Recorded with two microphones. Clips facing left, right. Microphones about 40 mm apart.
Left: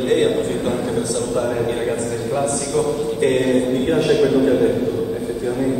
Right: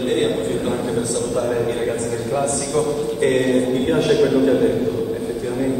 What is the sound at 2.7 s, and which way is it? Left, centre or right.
A man's voice, centre.